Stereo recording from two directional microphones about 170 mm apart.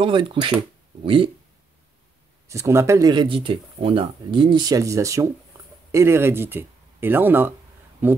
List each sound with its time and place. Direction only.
0.0 s speech: 30° right (ahead or behind)
2.4 s speech: 15° right (ahead or behind)